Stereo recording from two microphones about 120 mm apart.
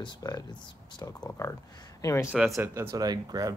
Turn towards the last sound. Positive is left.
turn(degrees=-35)  # may be behind; listen again after turning